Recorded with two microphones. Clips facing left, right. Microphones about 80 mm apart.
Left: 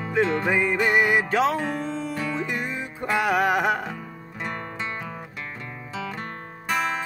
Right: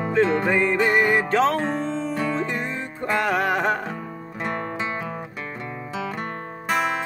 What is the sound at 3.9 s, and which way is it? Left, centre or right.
Music, centre.